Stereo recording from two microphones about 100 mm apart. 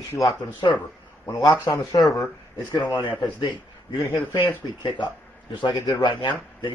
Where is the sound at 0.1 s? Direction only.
35° left (ahead or behind).